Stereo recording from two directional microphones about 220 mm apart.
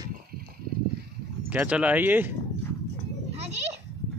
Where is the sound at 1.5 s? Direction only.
5° right (ahead or behind).